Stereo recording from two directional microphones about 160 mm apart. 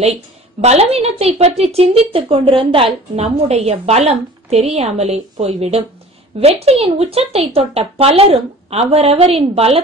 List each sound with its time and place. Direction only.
0.0 s a woman's voice: 40° right (ahead or behind)